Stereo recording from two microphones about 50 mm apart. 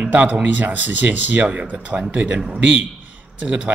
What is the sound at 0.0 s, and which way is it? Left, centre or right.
Speech, right.